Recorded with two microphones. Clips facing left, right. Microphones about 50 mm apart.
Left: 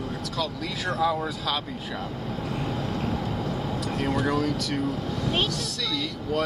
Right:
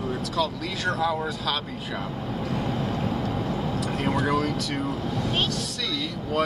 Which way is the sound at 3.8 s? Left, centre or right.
Centre.